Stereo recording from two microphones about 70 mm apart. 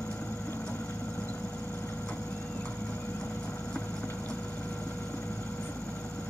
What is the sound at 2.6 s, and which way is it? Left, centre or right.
Clip-clop, left.